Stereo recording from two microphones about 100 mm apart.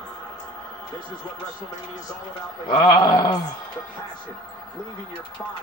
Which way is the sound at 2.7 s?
50° left (ahead or behind).